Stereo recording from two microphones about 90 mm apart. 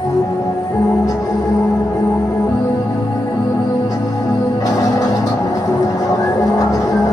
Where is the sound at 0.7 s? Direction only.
35° left (ahead or behind).